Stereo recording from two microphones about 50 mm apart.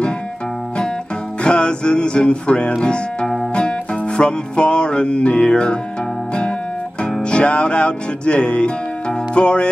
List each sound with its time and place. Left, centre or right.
1.4 s music: centre
2.8 s speech: centre
4.2 s music: centre
7.2 s music: left